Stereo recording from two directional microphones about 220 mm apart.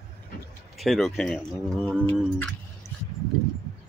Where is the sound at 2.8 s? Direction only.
10° left (ahead or behind).